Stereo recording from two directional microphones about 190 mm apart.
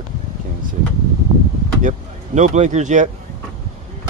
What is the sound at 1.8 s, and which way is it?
Speech, 40° right (ahead or behind).